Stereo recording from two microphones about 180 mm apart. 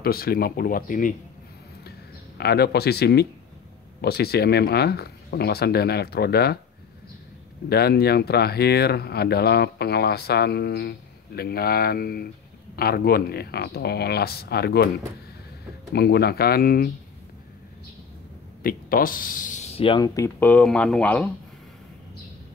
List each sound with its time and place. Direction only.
0.0 s speech: 55° left (ahead or behind)
1.9 s speech: 65° left (ahead or behind)
7.7 s speech: 60° left (ahead or behind)
15.9 s speech: 60° left (ahead or behind)
18.6 s speech: 55° left (ahead or behind); by 20.2 s 25° left (ahead or behind)
20.3 s speech: 10° left (ahead or behind)